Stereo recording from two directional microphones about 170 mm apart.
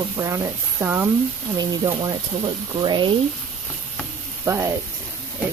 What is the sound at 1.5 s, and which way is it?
Speech, 25° right (ahead or behind).